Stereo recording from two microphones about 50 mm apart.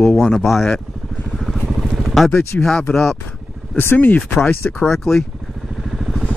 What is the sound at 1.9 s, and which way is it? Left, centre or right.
Vehicle, centre.